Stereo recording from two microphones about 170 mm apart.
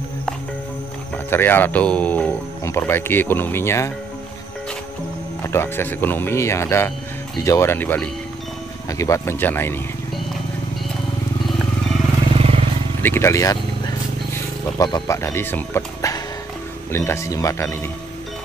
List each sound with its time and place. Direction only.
1.1 s speech: 10° left (ahead or behind)
5.4 s speech: 15° left (ahead or behind)
12.4 s vehicle: 35° right (ahead or behind)
13.0 s vehicle: 15° left (ahead or behind)
14.8 s speech: 25° left (ahead or behind)